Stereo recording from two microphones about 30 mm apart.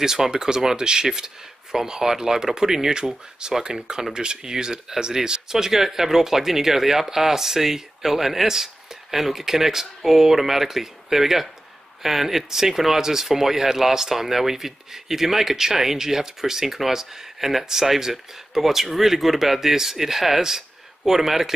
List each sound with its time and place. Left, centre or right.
0.0 s speech: centre
2.9 s speech: right